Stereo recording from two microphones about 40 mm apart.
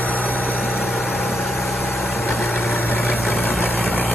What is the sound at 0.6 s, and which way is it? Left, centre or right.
Vehicle, centre.